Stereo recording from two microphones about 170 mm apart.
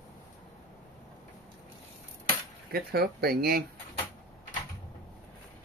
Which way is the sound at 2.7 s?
65° right (ahead or behind).